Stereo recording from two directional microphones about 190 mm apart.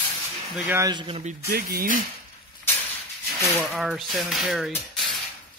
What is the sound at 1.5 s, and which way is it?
Speech, 50° right (ahead or behind).